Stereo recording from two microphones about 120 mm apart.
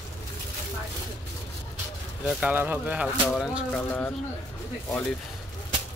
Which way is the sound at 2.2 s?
10° right (ahead or behind).